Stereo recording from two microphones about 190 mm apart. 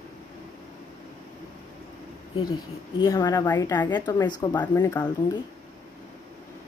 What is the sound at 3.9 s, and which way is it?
A woman's voice, 20° left (ahead or behind).